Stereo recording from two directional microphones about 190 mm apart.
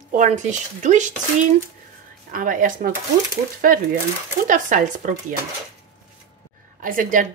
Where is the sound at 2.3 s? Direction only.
45° right (ahead or behind).